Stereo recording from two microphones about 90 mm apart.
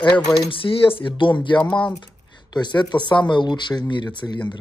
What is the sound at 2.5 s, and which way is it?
Speech, 55° left (ahead or behind).